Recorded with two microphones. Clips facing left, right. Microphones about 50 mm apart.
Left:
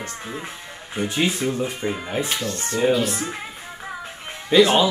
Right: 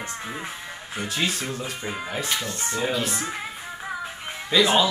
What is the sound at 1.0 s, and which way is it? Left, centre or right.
Speech, centre.